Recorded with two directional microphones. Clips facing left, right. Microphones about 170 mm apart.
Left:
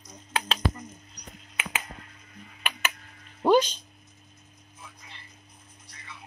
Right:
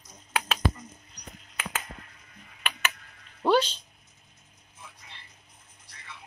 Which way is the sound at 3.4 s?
15° left (ahead or behind).